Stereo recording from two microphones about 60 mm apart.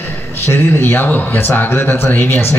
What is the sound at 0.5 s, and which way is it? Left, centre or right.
Speech, left.